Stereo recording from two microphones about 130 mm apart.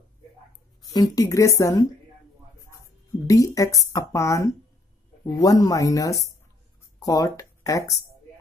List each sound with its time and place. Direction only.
0.8 s speech: 30° left (ahead or behind)
3.3 s speech: 25° left (ahead or behind)